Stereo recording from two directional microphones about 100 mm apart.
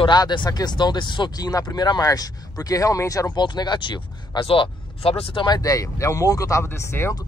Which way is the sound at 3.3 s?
45° left (ahead or behind).